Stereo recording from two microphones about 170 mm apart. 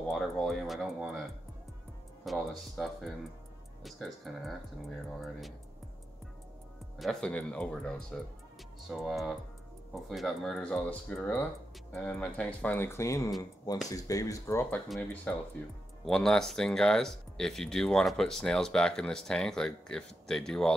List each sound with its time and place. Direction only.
0.1 s speech: centre (ahead or behind)
2.2 s speech: centre (ahead or behind)
7.0 s speech: 5° left (ahead or behind)